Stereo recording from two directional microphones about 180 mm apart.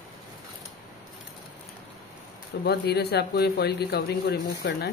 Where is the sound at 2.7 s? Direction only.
65° left (ahead or behind).